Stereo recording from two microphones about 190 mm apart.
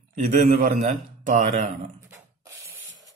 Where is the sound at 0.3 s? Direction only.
40° right (ahead or behind).